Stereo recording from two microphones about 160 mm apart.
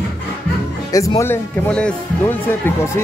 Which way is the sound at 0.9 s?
20° left (ahead or behind).